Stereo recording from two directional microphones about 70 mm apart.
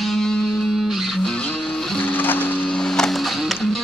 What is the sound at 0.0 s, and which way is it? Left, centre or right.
Music, centre.